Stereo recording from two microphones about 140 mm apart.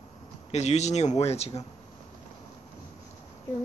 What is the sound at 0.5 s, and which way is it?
Speech, 50° left (ahead or behind).